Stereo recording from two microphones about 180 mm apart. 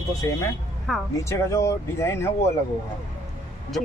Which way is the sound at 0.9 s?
Centre (ahead or behind).